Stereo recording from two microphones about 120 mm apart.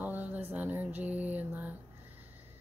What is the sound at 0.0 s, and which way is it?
Mantra, 15° right (ahead or behind).